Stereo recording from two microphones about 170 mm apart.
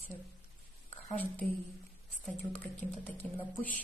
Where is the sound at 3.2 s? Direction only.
5° left (ahead or behind).